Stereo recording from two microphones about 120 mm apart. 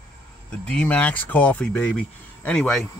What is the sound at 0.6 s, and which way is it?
Speech, 10° left (ahead or behind).